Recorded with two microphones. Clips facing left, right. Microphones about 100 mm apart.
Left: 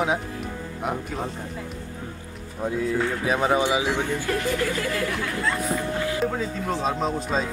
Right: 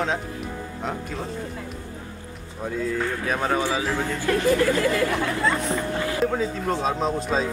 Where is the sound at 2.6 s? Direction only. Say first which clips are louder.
Left 2 dB; 10° left (ahead or behind).